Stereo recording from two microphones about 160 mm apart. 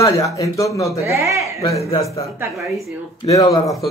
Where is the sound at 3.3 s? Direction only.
20° left (ahead or behind).